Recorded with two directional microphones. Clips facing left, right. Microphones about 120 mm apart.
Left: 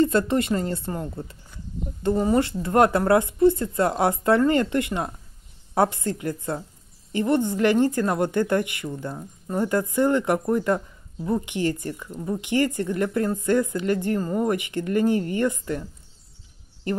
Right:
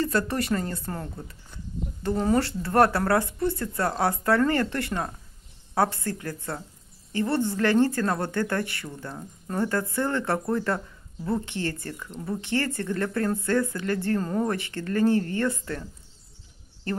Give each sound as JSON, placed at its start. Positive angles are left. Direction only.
{"t": 0.0, "sound": "speech", "side_deg": 20}
{"t": 2.3, "sound": "a woman's voice", "side_deg": 20}